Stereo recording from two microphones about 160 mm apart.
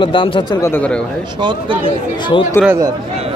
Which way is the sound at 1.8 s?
30° left (ahead or behind).